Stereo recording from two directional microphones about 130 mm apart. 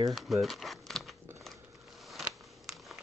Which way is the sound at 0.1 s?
Centre (ahead or behind).